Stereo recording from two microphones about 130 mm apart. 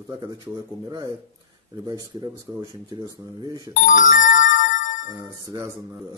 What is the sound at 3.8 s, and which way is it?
Music, 75° left (ahead or behind).